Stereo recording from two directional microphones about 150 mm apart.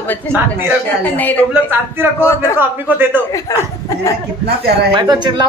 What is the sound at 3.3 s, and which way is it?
Speech, 20° left (ahead or behind).